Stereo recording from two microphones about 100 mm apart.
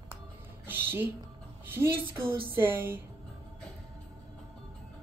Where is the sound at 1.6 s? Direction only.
20° right (ahead or behind).